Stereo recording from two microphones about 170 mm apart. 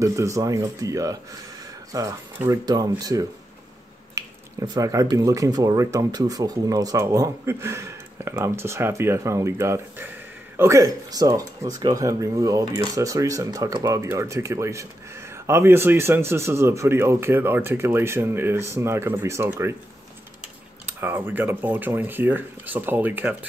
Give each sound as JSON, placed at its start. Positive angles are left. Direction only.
{"t": 0.0, "sound": "speech", "side_deg": -20}
{"t": 20.8, "sound": "speech", "side_deg": -10}